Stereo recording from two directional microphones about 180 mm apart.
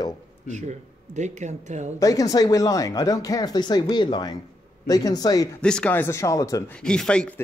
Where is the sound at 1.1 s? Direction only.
40° right (ahead or behind).